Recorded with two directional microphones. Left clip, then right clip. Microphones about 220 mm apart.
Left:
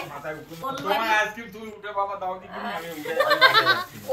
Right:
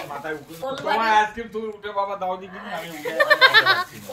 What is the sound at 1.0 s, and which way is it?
Speech, 25° right (ahead or behind).